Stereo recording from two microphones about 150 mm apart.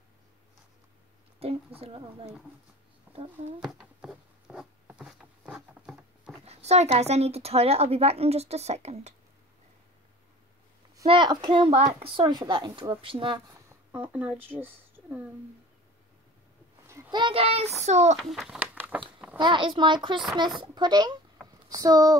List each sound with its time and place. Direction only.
1.4 s a sound: 40° right (ahead or behind)
1.8 s speech: 40° right (ahead or behind)
3.6 s zipper: 5° right (ahead or behind)
6.4 s a woman's voice: 45° right (ahead or behind)
11.1 s speech: 35° right (ahead or behind)
14.1 s speech: 10° right (ahead or behind)
17.1 s a woman's voice: 35° right (ahead or behind)
18.2 s a sound: centre (ahead or behind)
19.3 s a child's voice: 30° right (ahead or behind)